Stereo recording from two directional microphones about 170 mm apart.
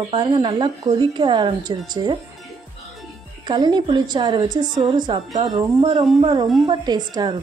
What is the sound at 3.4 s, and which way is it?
Speech, 25° right (ahead or behind).